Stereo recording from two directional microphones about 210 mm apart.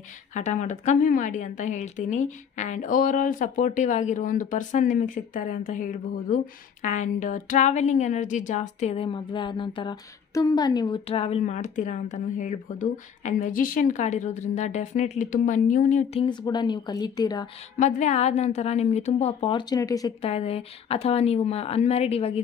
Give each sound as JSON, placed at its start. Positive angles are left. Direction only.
{"t": 0.3, "sound": "a woman's voice", "side_deg": 35}
{"t": 17.7, "sound": "a woman's voice", "side_deg": 35}
{"t": 20.2, "sound": "speech", "side_deg": 30}